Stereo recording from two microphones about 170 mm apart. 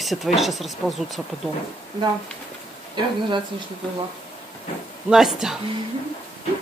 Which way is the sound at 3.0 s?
30° right (ahead or behind).